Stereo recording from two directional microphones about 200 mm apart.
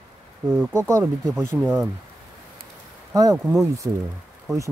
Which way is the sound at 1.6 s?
Centre (ahead or behind).